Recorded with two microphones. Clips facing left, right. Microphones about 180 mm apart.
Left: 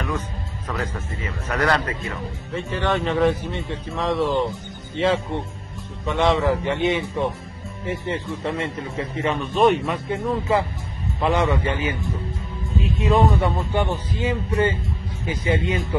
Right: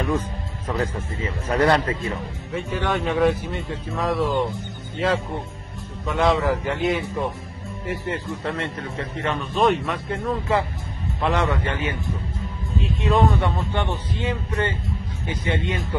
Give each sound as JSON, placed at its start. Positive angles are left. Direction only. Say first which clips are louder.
{"t": 0.7, "sound": "a man's voice", "louder": "right 3 dB", "side_deg": -30}
{"t": 2.5, "sound": "a man's voice", "louder": "left 1 dB", "side_deg": 0}